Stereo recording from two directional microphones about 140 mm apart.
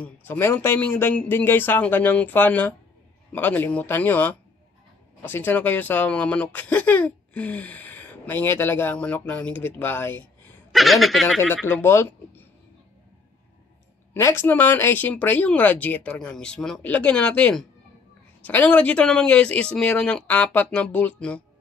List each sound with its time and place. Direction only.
0.0 s speech: 15° left (ahead or behind)
10.7 s speech: centre (ahead or behind)
11.6 s speech: 15° left (ahead or behind)
14.1 s speech: 20° left (ahead or behind)